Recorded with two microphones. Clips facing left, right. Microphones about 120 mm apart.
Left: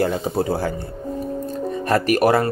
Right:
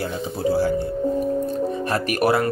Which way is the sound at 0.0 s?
55° left (ahead or behind).